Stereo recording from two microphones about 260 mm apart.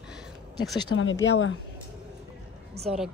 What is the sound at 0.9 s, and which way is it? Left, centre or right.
Speech, left.